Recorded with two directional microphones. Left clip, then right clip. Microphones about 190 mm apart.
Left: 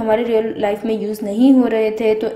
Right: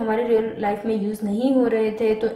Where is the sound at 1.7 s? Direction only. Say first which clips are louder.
Left 5 dB; 35° left (ahead or behind).